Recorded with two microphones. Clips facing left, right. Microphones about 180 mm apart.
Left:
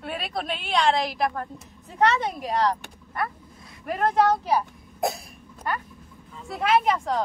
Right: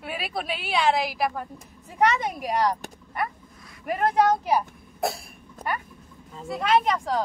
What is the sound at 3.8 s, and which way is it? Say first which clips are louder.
Speech: even; 15° right (ahead or behind).